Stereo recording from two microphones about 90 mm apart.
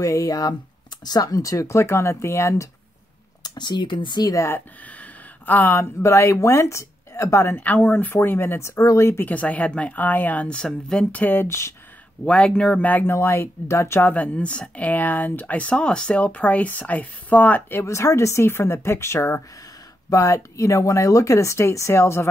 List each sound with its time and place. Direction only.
0.0 s speech: 40° left (ahead or behind)
3.4 s speech: 55° left (ahead or behind)
4.8 s speech: 20° left (ahead or behind)
9.2 s speech: 15° left (ahead or behind)
11.4 s speech: 30° left (ahead or behind)
12.3 s speech: 10° left (ahead or behind); by 14.1 s 30° left (ahead or behind)
14.1 s speech: 15° left (ahead or behind); by 22.3 s 30° left (ahead or behind)